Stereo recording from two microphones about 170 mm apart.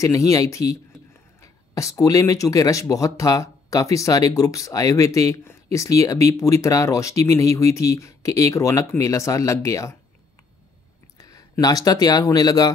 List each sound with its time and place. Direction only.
0.0 s speech: 20° left (ahead or behind)
11.1 s speech: 20° left (ahead or behind)